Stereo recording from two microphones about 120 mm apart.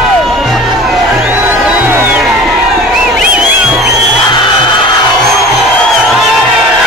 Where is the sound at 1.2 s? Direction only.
15° right (ahead or behind).